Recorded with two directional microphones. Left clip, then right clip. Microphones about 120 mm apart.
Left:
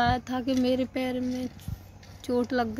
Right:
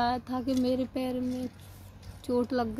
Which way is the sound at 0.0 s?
5° right (ahead or behind).